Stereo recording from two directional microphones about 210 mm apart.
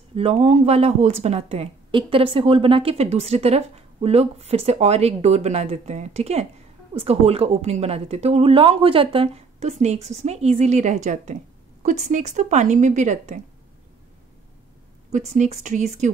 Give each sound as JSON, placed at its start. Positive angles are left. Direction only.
{"t": 0.1, "sound": "a woman's voice", "side_deg": -30}
{"t": 15.0, "sound": "a woman's voice", "side_deg": -35}